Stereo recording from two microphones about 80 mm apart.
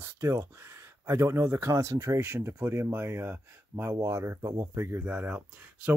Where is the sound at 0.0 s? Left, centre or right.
Right.